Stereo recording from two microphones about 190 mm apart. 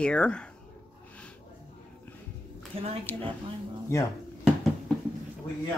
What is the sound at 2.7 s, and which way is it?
Speech, 30° right (ahead or behind).